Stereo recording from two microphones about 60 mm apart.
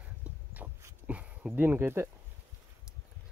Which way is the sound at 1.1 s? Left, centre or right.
Right.